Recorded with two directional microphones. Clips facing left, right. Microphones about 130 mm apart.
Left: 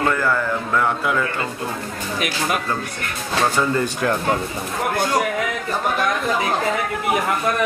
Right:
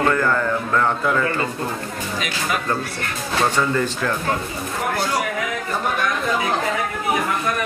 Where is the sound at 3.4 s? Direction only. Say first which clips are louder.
Left 1 dB; 10° left (ahead or behind).